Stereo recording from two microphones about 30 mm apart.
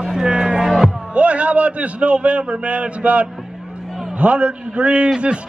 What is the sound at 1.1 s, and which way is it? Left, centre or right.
A man's voice, right.